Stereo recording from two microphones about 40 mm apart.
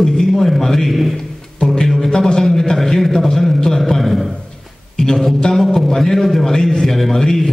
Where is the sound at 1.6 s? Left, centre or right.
Centre.